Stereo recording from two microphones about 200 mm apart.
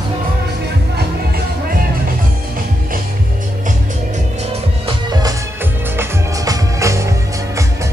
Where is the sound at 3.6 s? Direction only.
35° right (ahead or behind).